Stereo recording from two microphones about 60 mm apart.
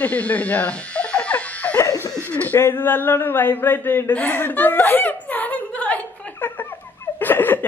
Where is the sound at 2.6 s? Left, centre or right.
Left.